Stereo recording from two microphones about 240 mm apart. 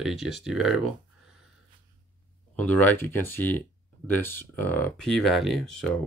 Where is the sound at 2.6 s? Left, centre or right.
Centre.